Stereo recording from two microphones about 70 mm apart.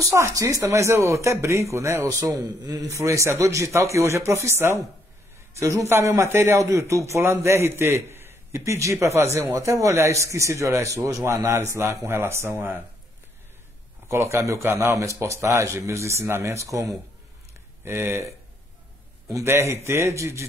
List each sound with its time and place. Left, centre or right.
0.1 s a man's voice: right
2.6 s a man's voice: right
3.0 s a man's voice: right
8.5 s a man's voice: right
14.0 s a man's voice: right
17.8 s a man's voice: right
19.4 s a man's voice: right